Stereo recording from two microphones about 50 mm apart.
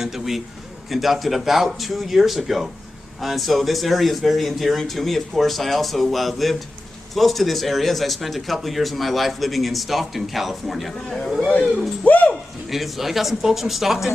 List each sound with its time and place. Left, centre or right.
0.0 s a man's voice: centre
12.0 s speech: left
12.6 s a man's voice: centre